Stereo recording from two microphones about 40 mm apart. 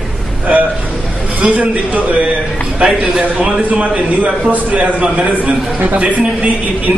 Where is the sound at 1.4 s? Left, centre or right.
Right.